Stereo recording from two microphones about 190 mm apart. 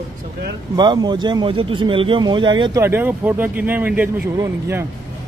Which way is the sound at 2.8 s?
10° right (ahead or behind).